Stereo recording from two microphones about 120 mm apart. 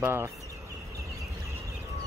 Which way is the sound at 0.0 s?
20° right (ahead or behind).